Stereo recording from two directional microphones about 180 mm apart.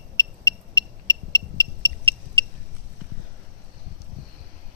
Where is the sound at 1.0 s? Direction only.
25° right (ahead or behind).